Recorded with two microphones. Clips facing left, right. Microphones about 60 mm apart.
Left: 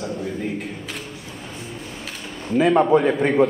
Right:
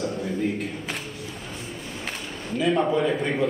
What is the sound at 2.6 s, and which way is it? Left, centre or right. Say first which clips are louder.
Speech: left 6 dB; left.